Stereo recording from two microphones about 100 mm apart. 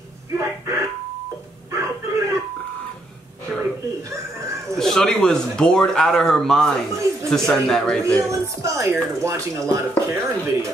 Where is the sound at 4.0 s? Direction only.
30° right (ahead or behind).